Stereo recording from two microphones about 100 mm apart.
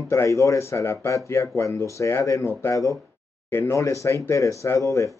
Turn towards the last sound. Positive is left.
turn(degrees=30)  # may be behind; listen again after turning